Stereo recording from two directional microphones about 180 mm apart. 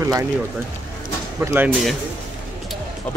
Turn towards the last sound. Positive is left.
turn(degrees=10)  # may be behind; listen again after turning